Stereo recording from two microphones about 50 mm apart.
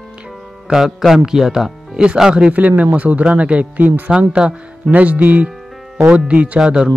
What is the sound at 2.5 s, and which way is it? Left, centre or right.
Speech, right.